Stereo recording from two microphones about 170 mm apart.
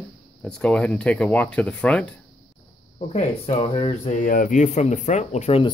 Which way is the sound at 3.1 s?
40° left (ahead or behind).